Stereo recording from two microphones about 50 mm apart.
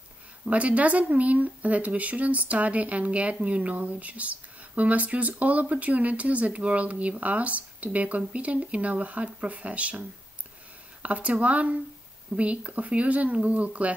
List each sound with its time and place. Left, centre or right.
0.5 s speech: right